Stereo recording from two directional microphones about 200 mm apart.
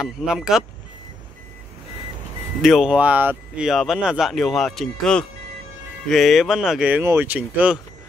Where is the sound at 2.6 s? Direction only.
Centre (ahead or behind).